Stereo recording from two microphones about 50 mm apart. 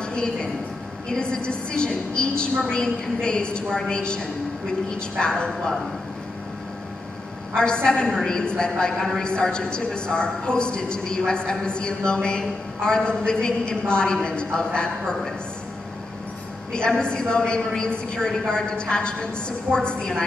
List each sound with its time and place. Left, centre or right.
0.0 s a sound: centre
1.0 s a woman's voice: centre
5.2 s a man's voice: centre
7.5 s a man's voice: centre
16.7 s a man's voice: centre